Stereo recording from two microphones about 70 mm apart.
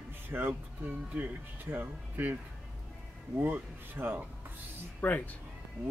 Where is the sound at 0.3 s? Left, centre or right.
Right.